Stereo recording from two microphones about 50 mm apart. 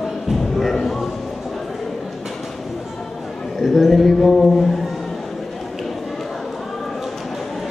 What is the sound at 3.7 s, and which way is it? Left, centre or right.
Speech, centre.